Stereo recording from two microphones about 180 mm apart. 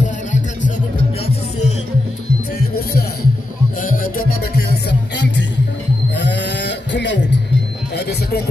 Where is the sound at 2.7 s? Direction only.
60° left (ahead or behind).